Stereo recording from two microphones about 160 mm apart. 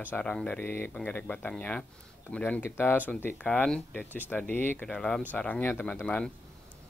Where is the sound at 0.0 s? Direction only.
10° left (ahead or behind).